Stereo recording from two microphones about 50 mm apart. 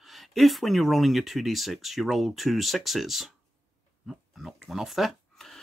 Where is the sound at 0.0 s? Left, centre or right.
Centre.